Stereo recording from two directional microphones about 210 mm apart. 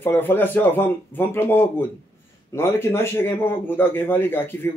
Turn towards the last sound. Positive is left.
turn(degrees=10)  # may be behind; listen again after turning